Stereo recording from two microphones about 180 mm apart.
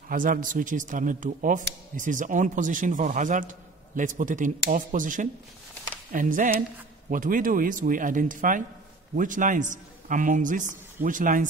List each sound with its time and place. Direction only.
0.1 s speech: 50° right (ahead or behind)